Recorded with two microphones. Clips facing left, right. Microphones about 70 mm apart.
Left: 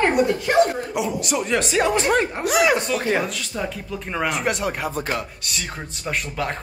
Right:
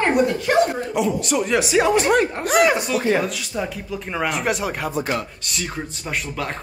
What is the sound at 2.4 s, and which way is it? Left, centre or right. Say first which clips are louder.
Speech: right 2 dB; right.